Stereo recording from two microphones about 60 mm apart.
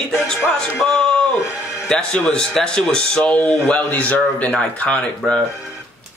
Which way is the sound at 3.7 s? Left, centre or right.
Left.